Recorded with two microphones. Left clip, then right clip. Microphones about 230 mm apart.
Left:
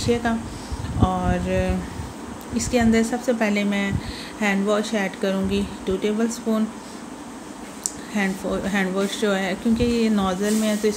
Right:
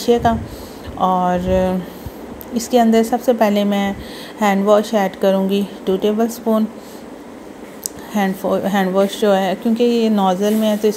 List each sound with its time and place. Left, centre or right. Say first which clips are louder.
0.0 s a woman's voice: right 8 dB; centre
8.1 s speech: right 7 dB; centre